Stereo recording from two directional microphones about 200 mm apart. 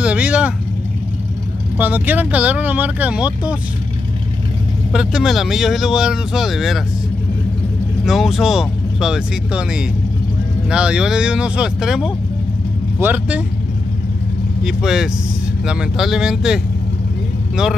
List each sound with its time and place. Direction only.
0.0 s vehicle: 5° right (ahead or behind)
1.8 s speech: 10° right (ahead or behind)
4.9 s speech: centre (ahead or behind)
8.0 s speech: centre (ahead or behind)
14.6 s speech: 5° right (ahead or behind)